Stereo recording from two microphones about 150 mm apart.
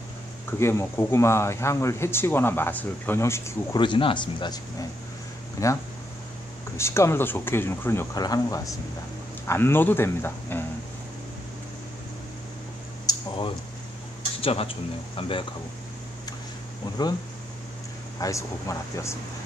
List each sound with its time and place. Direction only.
0.5 s speech: 15° left (ahead or behind)
3.7 s speech: 30° left (ahead or behind)
6.8 s speech: 20° left (ahead or behind)
13.1 s a sound: 25° left (ahead or behind)
14.4 s speech: 40° left (ahead or behind)
18.2 s speech: 20° left (ahead or behind)